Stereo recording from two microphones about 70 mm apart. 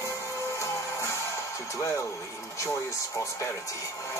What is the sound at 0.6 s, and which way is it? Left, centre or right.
Music, left.